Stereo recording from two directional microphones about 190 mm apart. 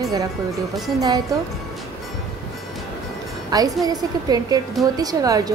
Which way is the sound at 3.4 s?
20° right (ahead or behind).